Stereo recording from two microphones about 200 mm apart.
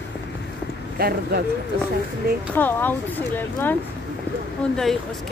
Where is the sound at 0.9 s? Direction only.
50° right (ahead or behind).